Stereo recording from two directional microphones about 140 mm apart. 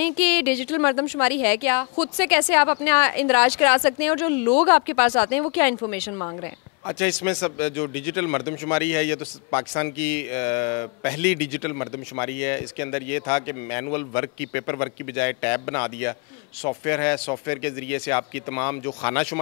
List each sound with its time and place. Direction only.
0.0 s a woman's voice: 15° left (ahead or behind)
6.9 s speech: 20° left (ahead or behind)